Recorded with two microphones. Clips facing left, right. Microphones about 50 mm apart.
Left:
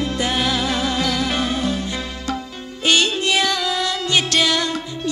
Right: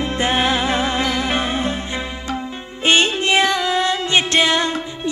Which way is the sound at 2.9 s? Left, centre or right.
Right.